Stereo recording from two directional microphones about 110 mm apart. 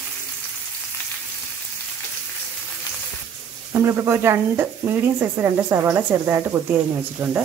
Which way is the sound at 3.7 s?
25° right (ahead or behind).